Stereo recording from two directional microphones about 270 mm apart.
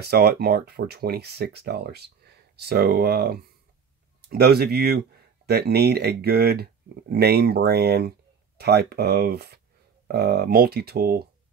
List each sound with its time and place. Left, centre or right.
0.0 s speech: right